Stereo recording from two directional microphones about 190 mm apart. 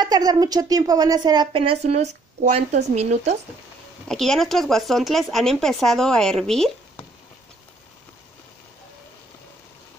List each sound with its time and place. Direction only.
0.0 s a woman's voice: 20° right (ahead or behind); by 3.3 s 35° right (ahead or behind)
4.1 s speech: centre (ahead or behind)